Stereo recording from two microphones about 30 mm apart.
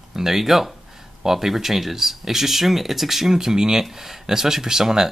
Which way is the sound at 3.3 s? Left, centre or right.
Centre.